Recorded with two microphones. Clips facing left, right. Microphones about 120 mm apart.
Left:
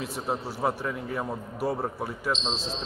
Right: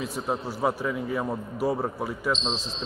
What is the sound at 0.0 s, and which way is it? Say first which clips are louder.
A man's voice: right 2 dB; centre (ahead or behind).